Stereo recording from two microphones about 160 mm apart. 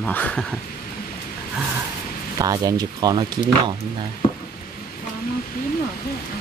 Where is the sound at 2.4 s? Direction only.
20° right (ahead or behind).